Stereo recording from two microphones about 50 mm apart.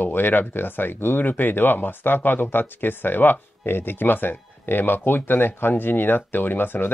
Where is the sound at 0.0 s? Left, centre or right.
Left.